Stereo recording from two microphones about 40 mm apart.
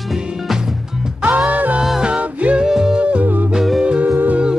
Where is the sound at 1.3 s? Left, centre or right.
Right.